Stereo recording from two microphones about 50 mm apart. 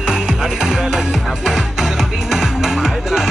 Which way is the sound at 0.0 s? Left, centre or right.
Centre.